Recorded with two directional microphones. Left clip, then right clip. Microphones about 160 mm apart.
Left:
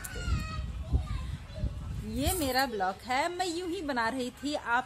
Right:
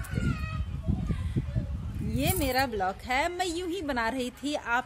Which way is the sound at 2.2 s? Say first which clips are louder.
Right 2 dB; 30° right (ahead or behind).